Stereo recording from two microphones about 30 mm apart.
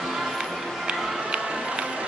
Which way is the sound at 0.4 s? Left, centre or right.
Right.